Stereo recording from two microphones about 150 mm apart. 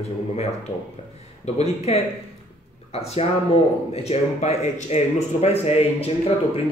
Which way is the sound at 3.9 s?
45° left (ahead or behind).